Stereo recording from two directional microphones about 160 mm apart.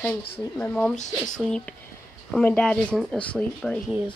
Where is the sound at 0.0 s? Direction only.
10° left (ahead or behind).